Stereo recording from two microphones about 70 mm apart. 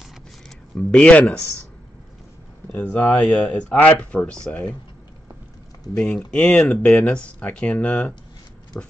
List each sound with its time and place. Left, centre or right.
0.7 s speech: centre
2.7 s speech: left
5.9 s speech: centre
6.8 s speech: centre